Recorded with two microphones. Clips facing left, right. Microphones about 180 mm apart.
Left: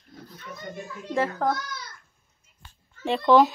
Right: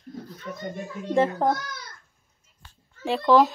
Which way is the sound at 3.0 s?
Centre (ahead or behind).